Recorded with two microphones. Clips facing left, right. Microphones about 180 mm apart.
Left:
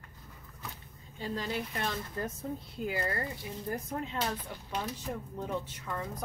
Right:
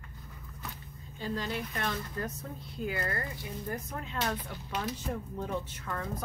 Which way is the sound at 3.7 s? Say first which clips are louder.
Left 5 dB; 30° left (ahead or behind).